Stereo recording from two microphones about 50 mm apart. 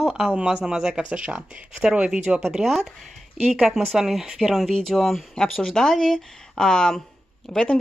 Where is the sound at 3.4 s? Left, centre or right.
Centre.